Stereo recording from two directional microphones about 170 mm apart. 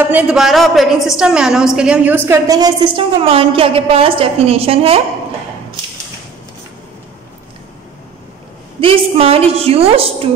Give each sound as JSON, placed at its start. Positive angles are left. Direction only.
{"t": 0.0, "sound": "a woman's voice", "side_deg": -5}
{"t": 8.8, "sound": "a woman's voice", "side_deg": -35}